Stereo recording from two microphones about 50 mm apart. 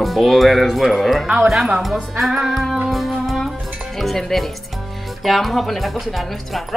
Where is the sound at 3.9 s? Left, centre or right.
Centre.